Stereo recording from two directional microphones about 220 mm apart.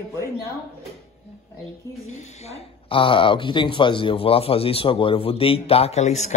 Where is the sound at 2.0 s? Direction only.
25° left (ahead or behind).